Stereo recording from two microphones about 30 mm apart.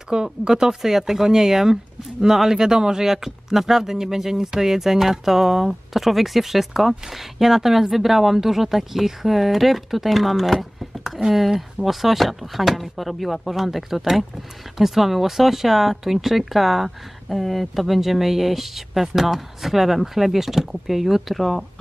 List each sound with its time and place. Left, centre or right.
0.1 s speech: right
0.8 s speech: centre